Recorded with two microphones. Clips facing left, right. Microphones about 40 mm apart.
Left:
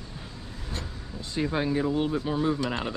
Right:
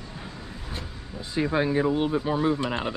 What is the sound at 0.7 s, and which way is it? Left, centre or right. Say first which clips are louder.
Speech: left 1 dB; centre.